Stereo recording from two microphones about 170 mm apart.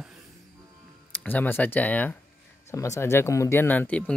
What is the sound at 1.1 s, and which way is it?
Speech, 10° left (ahead or behind).